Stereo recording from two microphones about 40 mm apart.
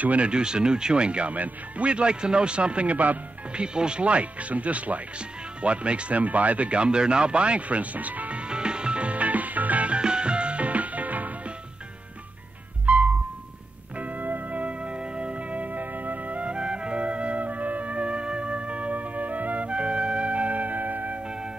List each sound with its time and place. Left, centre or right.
0.0 s speech: right
0.3 s speech: right
1.3 s speech: right
1.9 s speech: right
3.5 s speech: right
8.4 s music: right
12.8 s music: right